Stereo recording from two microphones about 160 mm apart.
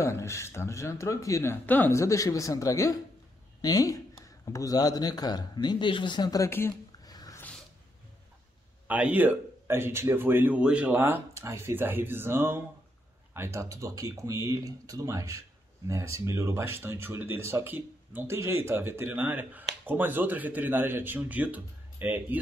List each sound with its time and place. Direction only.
0.0 s speech: 20° left (ahead or behind)
8.8 s speech: 10° right (ahead or behind)